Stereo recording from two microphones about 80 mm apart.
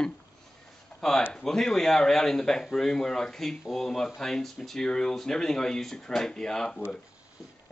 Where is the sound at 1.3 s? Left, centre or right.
Centre.